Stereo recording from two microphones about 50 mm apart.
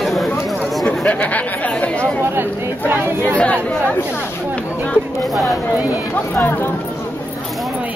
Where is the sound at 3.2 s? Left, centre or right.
Left.